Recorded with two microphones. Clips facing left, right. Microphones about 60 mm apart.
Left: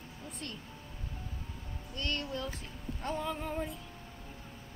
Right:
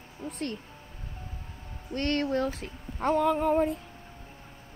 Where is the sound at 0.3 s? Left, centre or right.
Right.